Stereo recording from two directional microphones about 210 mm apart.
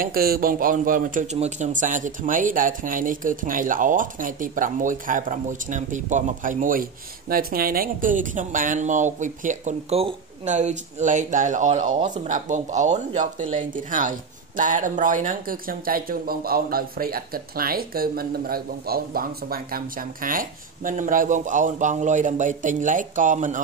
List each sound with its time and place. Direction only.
0.0 s a man's voice: 45° right (ahead or behind)